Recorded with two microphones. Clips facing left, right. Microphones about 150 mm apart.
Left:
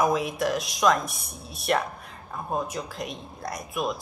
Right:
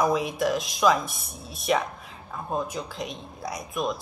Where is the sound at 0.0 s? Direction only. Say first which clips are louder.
Even; centre (ahead or behind).